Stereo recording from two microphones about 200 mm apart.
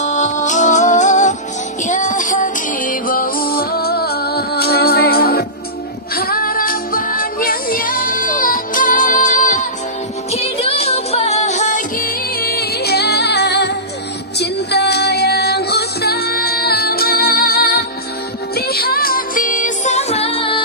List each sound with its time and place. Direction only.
0.0 s music: 35° left (ahead or behind)